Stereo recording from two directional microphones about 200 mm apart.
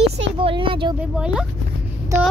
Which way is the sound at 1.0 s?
5° right (ahead or behind).